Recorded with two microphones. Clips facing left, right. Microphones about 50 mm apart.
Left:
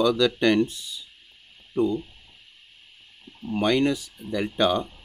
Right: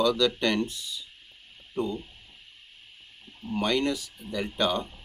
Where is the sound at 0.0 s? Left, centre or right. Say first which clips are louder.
Left 3 dB; left.